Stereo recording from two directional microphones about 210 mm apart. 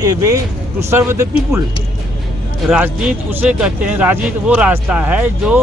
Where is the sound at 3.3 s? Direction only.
5° right (ahead or behind).